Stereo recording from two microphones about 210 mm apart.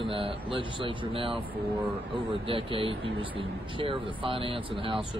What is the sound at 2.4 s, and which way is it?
Speech, 25° right (ahead or behind).